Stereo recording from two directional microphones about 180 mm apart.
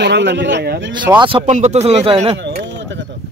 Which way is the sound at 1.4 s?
40° right (ahead or behind).